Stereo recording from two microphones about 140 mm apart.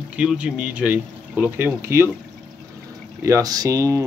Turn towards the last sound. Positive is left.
turn(degrees=-20)  # may be behind; listen again after turning